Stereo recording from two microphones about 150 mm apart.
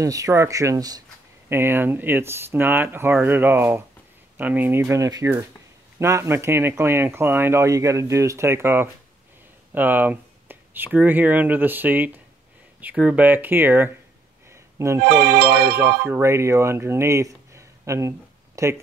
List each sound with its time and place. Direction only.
0.0 s speech: 20° right (ahead or behind)
15.0 s music: 90° right
16.0 s speech: 20° right (ahead or behind)